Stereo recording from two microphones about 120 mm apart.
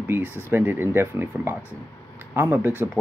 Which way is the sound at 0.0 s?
20° right (ahead or behind).